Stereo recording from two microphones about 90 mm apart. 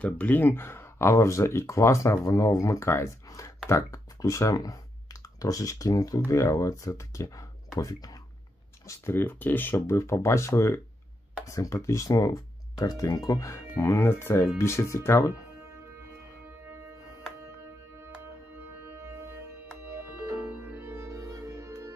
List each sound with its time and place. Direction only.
0.0 s speech: 20° left (ahead or behind)
18.8 s music: 25° right (ahead or behind)